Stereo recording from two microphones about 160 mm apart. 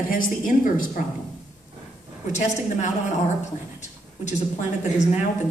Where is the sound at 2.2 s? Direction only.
50° left (ahead or behind).